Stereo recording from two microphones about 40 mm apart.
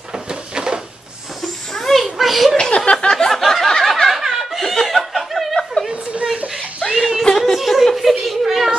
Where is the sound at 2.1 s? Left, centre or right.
Centre.